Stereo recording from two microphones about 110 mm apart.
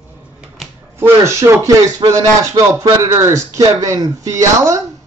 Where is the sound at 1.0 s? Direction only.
25° right (ahead or behind).